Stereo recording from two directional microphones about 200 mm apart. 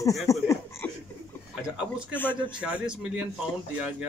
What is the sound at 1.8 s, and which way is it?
Speech, 5° right (ahead or behind).